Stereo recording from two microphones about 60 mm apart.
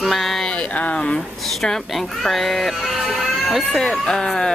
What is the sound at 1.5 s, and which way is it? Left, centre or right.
Speech, centre.